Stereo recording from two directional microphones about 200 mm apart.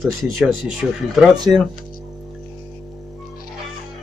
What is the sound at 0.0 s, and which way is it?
Speech, centre (ahead or behind).